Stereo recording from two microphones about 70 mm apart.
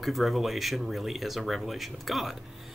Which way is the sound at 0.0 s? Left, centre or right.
Centre.